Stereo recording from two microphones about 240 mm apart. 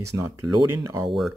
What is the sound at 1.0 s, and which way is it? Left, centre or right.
Speech, centre.